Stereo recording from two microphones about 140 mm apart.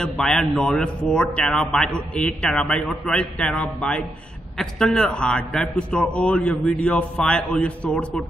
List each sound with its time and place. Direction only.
0.0 s a man's voice: 5° left (ahead or behind)